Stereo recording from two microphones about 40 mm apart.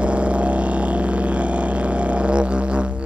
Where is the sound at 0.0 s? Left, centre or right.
Right.